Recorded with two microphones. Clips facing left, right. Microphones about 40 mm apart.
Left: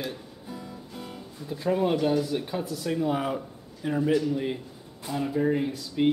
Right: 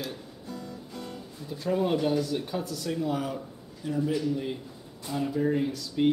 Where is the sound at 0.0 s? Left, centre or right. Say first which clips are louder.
Left 2 dB; centre; by 4.2 s left.